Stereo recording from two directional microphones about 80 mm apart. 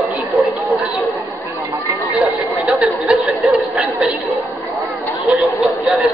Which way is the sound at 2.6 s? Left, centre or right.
Centre.